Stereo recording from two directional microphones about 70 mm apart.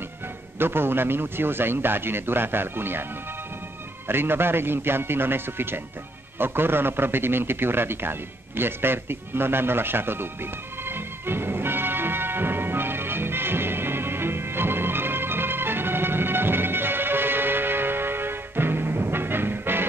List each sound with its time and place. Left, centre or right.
0.6 s a man's voice: right
4.1 s a man's voice: right
6.3 s a sound: right